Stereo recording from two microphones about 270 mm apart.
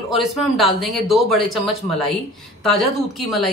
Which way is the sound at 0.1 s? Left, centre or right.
Centre.